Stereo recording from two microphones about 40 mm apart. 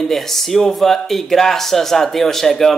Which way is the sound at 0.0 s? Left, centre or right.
Centre.